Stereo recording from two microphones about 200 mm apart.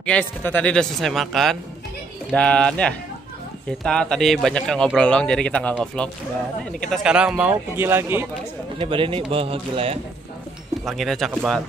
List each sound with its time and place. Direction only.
0.0 s a man's voice: 5° left (ahead or behind); by 8.3 s 10° right (ahead or behind)
8.7 s speech: 25° right (ahead or behind)
10.9 s a man's voice: centre (ahead or behind)